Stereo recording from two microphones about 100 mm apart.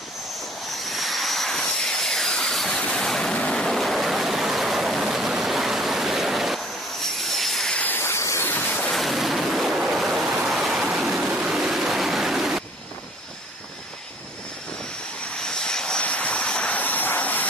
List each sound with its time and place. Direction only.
0.8 s vehicle: centre (ahead or behind)
7.8 s waves: 20° left (ahead or behind)
8.9 s a sound: centre (ahead or behind)
15.4 s vehicle: 10° left (ahead or behind)